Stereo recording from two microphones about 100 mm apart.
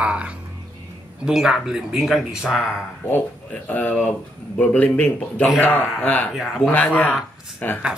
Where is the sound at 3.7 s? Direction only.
15° left (ahead or behind).